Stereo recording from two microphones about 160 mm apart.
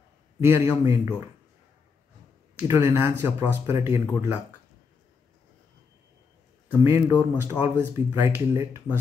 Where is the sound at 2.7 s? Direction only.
15° right (ahead or behind).